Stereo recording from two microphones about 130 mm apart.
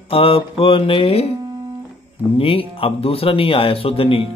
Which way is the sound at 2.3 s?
45° left (ahead or behind).